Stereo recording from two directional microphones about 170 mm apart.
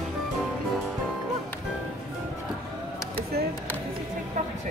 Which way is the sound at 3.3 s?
70° right (ahead or behind).